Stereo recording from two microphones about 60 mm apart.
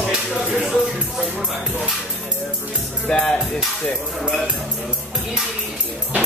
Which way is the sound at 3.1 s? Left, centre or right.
Centre.